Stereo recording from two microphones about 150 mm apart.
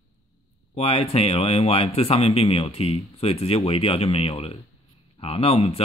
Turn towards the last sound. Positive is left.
turn(degrees=40)  # may be behind; listen again after turning